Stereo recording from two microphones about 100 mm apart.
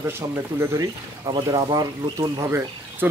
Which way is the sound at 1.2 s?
40° right (ahead or behind).